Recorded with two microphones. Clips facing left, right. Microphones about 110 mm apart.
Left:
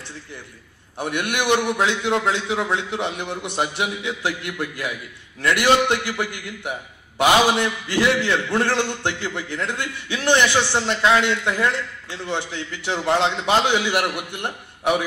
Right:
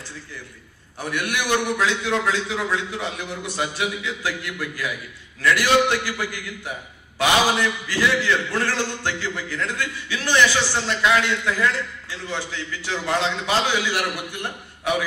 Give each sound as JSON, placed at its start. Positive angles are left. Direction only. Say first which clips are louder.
{"t": 0.9, "sound": "a man's voice", "louder": "left 2 dB", "side_deg": 20}